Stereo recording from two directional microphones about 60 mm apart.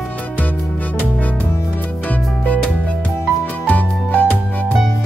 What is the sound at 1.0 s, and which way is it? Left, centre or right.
Music, left.